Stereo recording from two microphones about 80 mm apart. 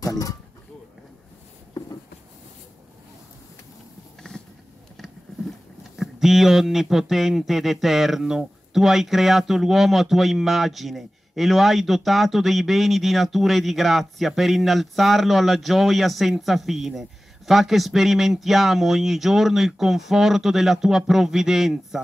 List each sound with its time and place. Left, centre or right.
0.0 s speech: left
5.9 s speech: centre